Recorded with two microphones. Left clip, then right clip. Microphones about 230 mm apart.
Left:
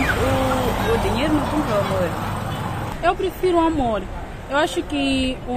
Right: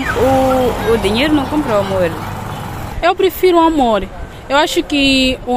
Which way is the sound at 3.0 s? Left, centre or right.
Right.